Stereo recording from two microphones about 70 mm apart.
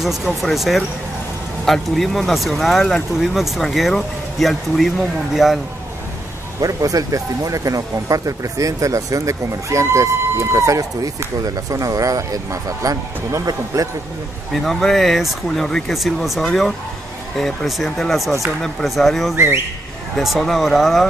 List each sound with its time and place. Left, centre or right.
0.0 s speech: centre
6.6 s speech: right
14.5 s speech: centre
19.3 s speech: right
20.2 s speech: centre